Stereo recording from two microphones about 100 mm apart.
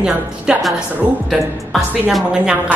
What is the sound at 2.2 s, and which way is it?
Speech, 10° right (ahead or behind).